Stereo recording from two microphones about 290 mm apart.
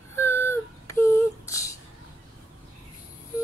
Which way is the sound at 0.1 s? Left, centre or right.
Centre.